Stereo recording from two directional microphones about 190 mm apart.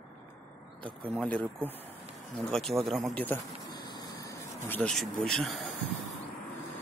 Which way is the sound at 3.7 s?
25° left (ahead or behind).